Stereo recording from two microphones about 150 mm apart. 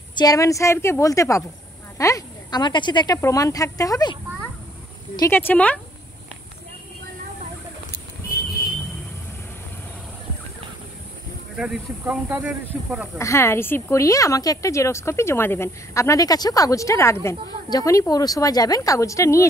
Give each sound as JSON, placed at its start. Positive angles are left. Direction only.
{"t": 0.1, "sound": "a woman's voice", "side_deg": 25}
{"t": 11.5, "sound": "speech", "side_deg": -5}
{"t": 13.2, "sound": "a woman's voice", "side_deg": 20}